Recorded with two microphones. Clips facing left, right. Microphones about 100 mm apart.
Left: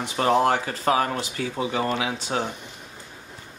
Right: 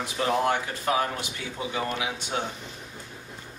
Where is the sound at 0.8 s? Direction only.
90° left.